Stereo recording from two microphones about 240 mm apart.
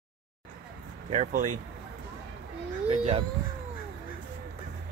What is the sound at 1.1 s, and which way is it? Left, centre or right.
Speech, right.